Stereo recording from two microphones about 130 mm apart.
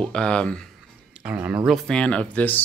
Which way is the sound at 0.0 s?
5° left (ahead or behind).